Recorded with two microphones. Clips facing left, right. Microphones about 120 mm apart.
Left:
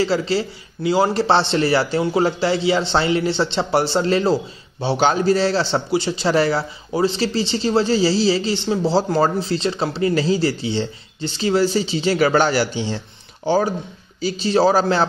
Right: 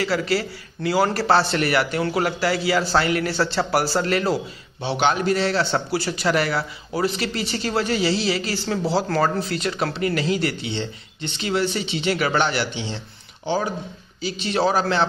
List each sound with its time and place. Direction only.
0.0 s a man's voice: 25° left (ahead or behind)